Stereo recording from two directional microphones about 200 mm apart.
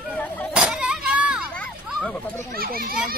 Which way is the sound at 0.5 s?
5° right (ahead or behind).